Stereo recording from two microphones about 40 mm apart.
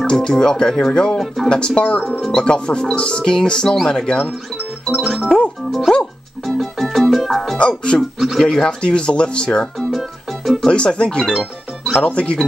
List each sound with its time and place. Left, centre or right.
0.0 s speech: centre
1.1 s speech: centre
1.8 s speech: left
2.0 s speech: centre
2.3 s speech: left
4.8 s speech: centre
6.4 s music: centre
7.5 s speech: left
8.2 s speech: centre
8.5 s speech: centre
8.8 s speech: left
9.8 s music: centre
10.7 s speech: left